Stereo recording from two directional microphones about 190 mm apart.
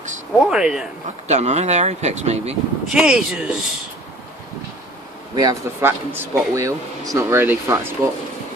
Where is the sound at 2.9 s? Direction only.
5° right (ahead or behind).